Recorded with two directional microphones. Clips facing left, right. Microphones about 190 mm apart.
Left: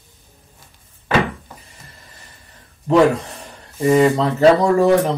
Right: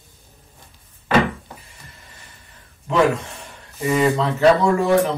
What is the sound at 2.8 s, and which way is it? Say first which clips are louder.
Speech: left 4 dB; 35° left (ahead or behind).